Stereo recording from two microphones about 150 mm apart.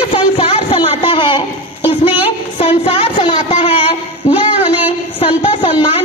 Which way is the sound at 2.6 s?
40° left (ahead or behind).